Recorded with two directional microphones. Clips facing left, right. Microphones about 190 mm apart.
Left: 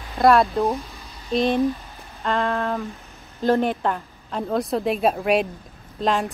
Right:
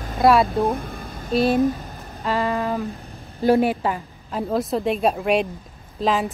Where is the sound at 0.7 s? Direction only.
55° right (ahead or behind).